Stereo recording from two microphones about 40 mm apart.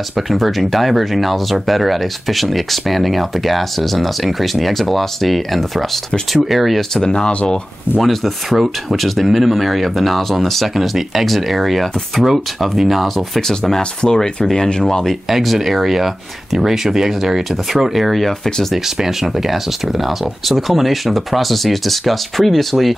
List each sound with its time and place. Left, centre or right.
0.3 s speech: centre
7.0 s speech: centre
8.0 s speech: centre
13.5 s speech: centre
15.2 s speech: centre
18.9 s speech: centre